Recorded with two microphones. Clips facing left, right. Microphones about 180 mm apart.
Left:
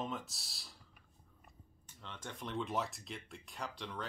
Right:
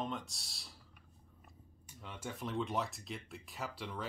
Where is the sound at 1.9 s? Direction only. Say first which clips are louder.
Right 3 dB; 10° right (ahead or behind).